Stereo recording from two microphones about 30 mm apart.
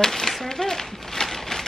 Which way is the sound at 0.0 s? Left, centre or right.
Centre.